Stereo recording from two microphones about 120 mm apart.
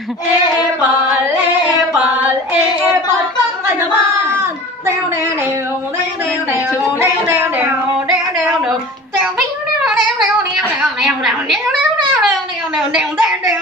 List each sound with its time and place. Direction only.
7.0 s a sound: 15° right (ahead or behind)
11.0 s a woman's voice: centre (ahead or behind)
12.7 s a woman's voice: 5° right (ahead or behind)